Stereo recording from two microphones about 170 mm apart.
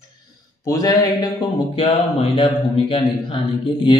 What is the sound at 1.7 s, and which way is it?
Speech, 35° left (ahead or behind).